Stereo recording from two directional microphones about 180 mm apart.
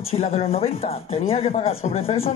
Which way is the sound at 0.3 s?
35° left (ahead or behind).